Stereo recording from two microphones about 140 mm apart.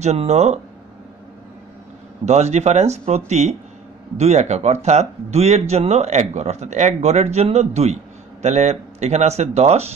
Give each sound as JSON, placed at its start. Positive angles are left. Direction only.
{"t": 0.0, "sound": "speech", "side_deg": -50}
{"t": 2.2, "sound": "speech", "side_deg": -50}